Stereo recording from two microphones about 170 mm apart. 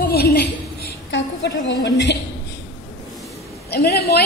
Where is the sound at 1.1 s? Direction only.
90° left.